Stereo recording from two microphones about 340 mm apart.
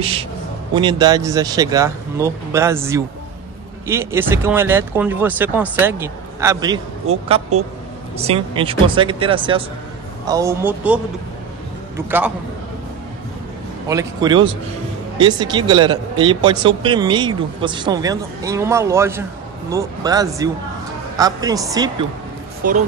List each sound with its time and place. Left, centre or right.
0.0 s speech: centre
13.8 s speech: centre
22.6 s speech: right